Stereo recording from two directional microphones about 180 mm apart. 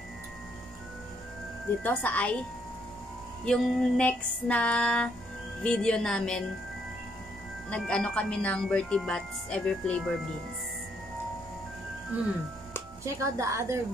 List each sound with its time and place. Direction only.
1.8 s speech: 10° left (ahead or behind)
3.4 s speech: 5° left (ahead or behind)
7.7 s speech: 5° left (ahead or behind)
13.0 s speech: 15° right (ahead or behind)